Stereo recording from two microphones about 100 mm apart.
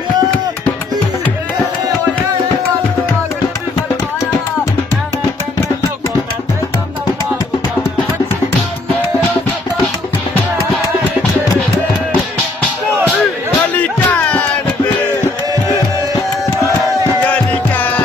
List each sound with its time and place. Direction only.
13.6 s music: 15° left (ahead or behind)
17.2 s music: 15° left (ahead or behind)